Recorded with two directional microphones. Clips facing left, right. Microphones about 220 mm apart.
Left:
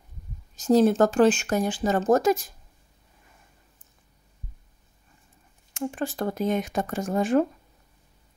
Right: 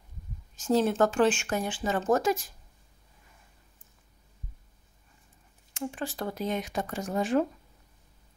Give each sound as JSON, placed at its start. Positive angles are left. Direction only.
{"t": 0.6, "sound": "speech", "side_deg": 40}
{"t": 5.7, "sound": "speech", "side_deg": 50}